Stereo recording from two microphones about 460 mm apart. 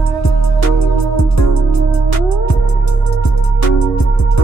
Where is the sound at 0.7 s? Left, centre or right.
Left.